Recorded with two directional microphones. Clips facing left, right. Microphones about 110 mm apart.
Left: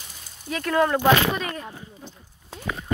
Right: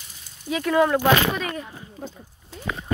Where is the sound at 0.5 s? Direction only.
10° right (ahead or behind).